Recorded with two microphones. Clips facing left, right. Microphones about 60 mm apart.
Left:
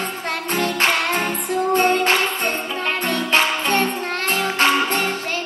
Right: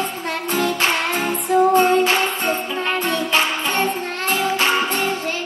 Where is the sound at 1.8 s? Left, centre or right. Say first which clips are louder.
Right 1 dB; left.